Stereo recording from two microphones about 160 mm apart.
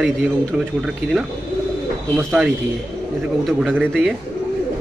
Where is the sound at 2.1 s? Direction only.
5° right (ahead or behind).